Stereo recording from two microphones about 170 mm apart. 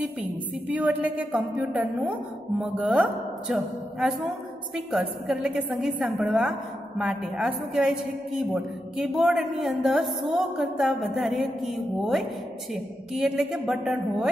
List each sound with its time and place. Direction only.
0.7 s a woman's voice: 10° right (ahead or behind)